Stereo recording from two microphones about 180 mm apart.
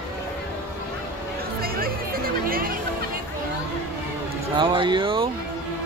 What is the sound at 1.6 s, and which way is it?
Music, 55° right (ahead or behind).